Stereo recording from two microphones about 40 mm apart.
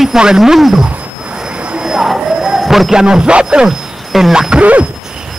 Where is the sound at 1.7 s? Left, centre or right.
Centre.